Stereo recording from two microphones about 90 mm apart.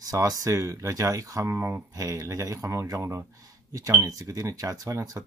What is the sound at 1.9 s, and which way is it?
Speech, 35° right (ahead or behind).